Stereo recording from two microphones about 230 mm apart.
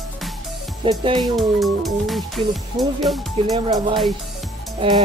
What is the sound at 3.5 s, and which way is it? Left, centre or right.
Speech, centre.